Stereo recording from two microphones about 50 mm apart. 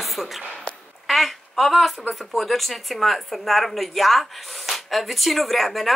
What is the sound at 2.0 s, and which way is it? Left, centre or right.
Speech, centre.